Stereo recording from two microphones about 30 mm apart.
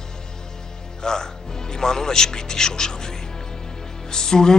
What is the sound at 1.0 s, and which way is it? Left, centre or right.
Music, left.